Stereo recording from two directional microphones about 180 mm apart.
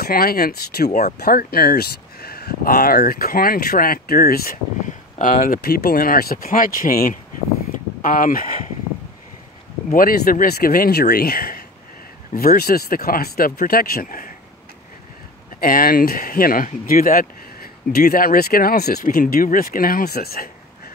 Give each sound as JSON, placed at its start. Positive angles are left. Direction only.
{"t": 0.0, "sound": "speech", "side_deg": 55}
{"t": 9.8, "sound": "speech", "side_deg": 50}
{"t": 15.6, "sound": "speech", "side_deg": 55}